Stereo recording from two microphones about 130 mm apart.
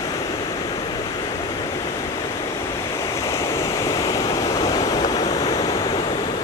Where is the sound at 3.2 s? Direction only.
25° left (ahead or behind).